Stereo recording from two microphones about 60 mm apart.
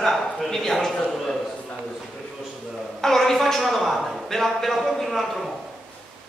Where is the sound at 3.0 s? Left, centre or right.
Centre.